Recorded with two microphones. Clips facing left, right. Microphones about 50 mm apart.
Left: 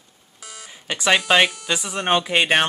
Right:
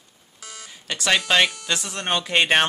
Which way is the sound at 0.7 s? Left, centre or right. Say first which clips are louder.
Left 3 dB; centre.